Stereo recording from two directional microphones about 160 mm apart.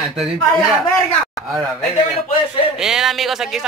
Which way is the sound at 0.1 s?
Centre (ahead or behind).